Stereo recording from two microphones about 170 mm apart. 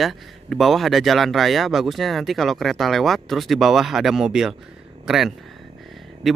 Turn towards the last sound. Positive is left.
turn(degrees=0)  # may be behind; listen again after turning